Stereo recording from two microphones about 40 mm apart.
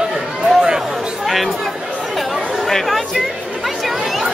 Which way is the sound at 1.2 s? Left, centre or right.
Centre.